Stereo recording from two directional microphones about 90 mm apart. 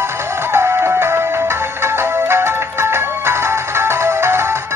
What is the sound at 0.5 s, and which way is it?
Music, 30° right (ahead or behind).